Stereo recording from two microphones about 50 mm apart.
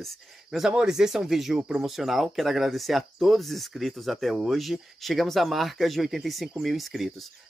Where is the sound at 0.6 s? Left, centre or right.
Centre.